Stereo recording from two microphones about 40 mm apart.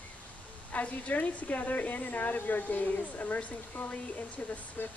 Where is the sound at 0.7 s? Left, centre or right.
Left.